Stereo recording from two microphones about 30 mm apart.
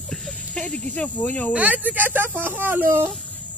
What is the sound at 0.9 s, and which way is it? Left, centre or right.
Speech, left.